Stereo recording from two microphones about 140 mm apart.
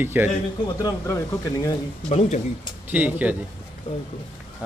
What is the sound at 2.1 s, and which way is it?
Speech, 50° left (ahead or behind).